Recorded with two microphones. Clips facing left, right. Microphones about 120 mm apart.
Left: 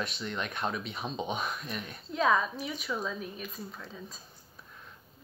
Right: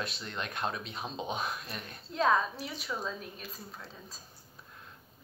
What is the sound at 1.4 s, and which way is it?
Speech, 35° right (ahead or behind).